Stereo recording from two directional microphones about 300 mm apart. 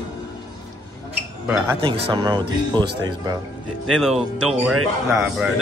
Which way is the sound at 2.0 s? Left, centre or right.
Centre.